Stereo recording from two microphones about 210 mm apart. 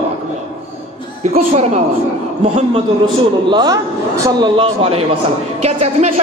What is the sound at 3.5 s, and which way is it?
A man's voice, 20° right (ahead or behind).